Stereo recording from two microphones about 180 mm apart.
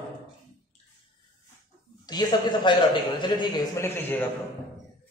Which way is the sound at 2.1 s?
25° left (ahead or behind).